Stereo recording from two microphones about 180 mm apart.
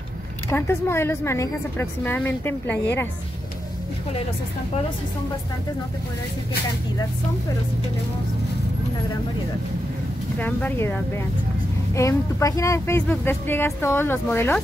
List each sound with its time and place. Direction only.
0.5 s a woman's voice: 15° left (ahead or behind)
10.4 s a woman's voice: 10° left (ahead or behind)